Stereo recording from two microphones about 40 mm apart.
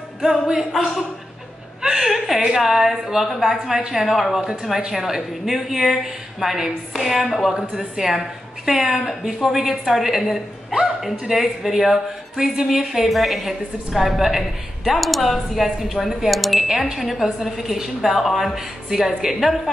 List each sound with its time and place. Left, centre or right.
0.2 s a woman's voice: centre
1.9 s a woman's voice: centre
7.5 s a woman's voice: centre